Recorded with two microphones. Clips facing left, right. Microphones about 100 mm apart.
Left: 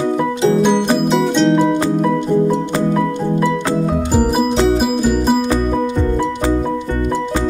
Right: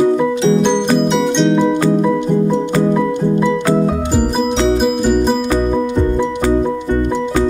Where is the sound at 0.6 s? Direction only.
Centre (ahead or behind).